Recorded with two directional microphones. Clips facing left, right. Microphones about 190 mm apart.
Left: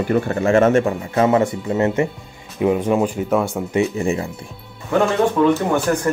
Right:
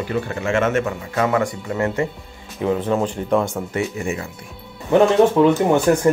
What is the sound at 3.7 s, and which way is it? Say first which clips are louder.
Speech: left 6 dB; 25° left (ahead or behind).